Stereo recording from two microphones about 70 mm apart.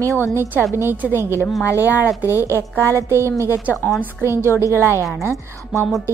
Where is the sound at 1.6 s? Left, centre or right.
Left.